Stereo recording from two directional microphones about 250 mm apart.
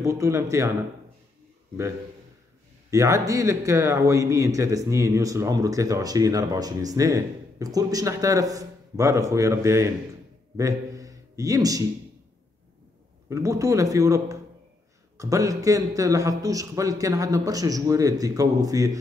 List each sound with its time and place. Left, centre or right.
0.0 s a man's voice: centre
2.9 s a man's voice: centre
10.6 s a sound: centre
13.3 s a man's voice: centre